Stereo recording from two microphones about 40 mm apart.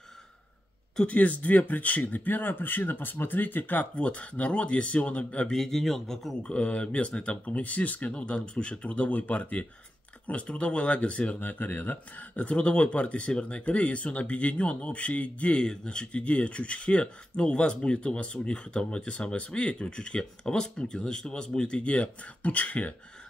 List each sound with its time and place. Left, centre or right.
1.0 s speech: left
2.2 s speech: left
3.9 s speech: left
5.5 s speech: centre
6.5 s speech: left
8.1 s speech: left
11.4 s speech: left
12.4 s speech: left
15.6 s speech: left